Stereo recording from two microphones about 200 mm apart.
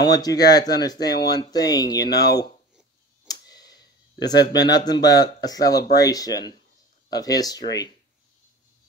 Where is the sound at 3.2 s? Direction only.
20° left (ahead or behind).